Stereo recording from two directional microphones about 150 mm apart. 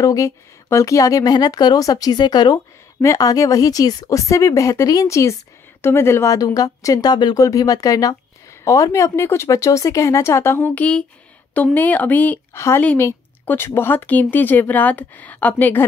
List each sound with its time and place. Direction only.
0.0 s a woman's voice: 20° left (ahead or behind)